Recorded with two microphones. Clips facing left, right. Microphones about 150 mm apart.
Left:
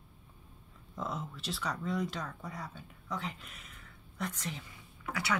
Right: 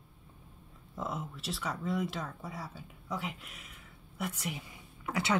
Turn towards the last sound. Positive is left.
turn(degrees=-25)  # may be behind; listen again after turning